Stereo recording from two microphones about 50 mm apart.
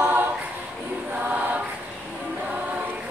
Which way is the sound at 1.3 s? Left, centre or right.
Right.